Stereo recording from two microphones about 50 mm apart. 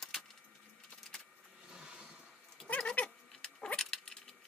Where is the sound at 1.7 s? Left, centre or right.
Centre.